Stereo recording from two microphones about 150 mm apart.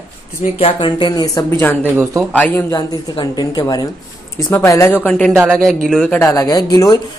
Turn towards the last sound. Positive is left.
turn(degrees=25)  # may be behind; listen again after turning